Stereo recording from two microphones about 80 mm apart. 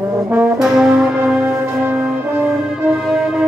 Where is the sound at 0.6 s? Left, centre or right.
Centre.